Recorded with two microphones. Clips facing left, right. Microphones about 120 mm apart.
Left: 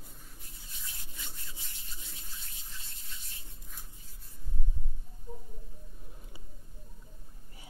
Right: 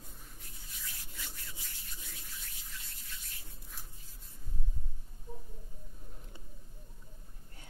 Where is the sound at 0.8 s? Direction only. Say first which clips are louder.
Even; 25° left (ahead or behind).